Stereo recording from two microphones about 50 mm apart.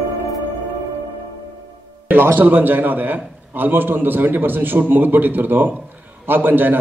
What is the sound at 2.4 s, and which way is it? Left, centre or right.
A man's voice, right.